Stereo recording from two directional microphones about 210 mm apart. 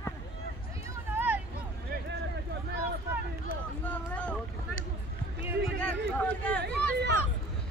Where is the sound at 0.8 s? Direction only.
10° right (ahead or behind).